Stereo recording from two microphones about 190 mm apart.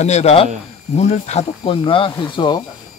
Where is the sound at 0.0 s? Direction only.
35° left (ahead or behind).